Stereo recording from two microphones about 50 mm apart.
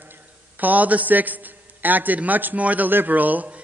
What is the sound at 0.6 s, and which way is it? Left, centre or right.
A man's voice, right.